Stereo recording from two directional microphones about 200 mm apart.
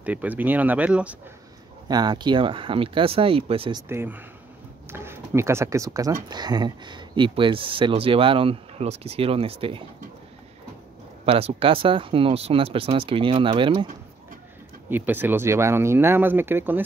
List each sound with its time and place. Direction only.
0.0 s speech: 5° right (ahead or behind)
1.9 s speech: 20° right (ahead or behind)
3.9 s speech: 10° right (ahead or behind); by 9.8 s 25° right (ahead or behind)
11.2 s speech: 30° right (ahead or behind)
14.9 s speech: 10° right (ahead or behind)